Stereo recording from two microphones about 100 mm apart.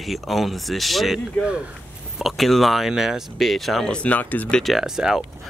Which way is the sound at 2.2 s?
Centre (ahead or behind).